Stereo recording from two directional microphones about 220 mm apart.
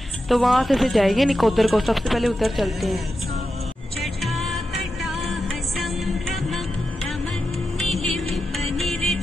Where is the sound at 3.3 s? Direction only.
30° right (ahead or behind).